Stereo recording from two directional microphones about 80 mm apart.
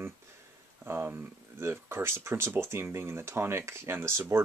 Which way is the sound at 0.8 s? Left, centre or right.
Right.